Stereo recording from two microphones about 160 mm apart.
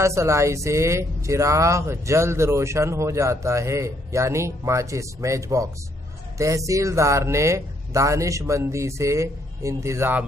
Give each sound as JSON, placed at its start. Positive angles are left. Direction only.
{"t": 0.0, "sound": "speech", "side_deg": -20}